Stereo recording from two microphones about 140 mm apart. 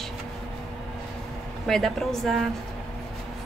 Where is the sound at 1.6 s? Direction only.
Centre (ahead or behind).